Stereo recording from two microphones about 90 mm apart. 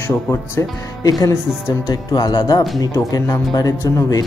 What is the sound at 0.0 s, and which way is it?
Speech, 30° left (ahead or behind).